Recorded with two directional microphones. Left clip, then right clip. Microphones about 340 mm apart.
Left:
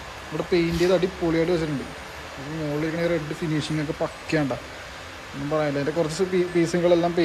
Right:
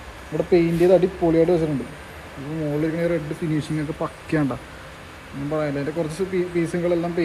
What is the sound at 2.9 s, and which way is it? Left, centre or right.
Speech, centre.